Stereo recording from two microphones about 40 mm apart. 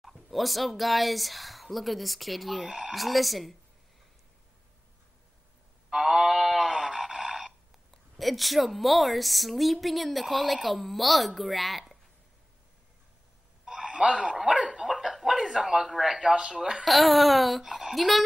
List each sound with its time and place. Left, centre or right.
0.0 s speech: centre
5.9 s a sound: centre
13.7 s a sound: centre
13.9 s speech: right
14.7 s dog: centre
15.2 s speech: centre
16.8 s speech: centre